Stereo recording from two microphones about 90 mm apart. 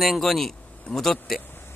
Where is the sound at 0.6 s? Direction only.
15° left (ahead or behind).